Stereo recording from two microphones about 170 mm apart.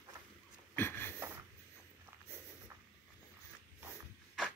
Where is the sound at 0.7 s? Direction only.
10° left (ahead or behind).